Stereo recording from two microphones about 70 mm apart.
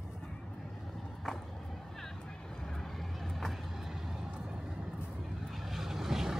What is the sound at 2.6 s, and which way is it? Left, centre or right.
Vehicle, centre.